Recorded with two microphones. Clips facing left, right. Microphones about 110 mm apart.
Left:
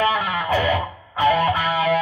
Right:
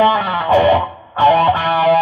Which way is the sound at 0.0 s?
30° right (ahead or behind).